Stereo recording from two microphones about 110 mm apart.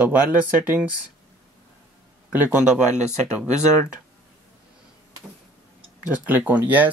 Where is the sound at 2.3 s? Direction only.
15° right (ahead or behind).